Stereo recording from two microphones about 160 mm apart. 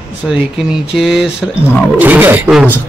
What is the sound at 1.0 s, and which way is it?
A man's voice, centre (ahead or behind).